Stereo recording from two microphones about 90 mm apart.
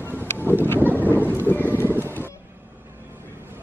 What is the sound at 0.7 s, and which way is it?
Thunder, 20° right (ahead or behind).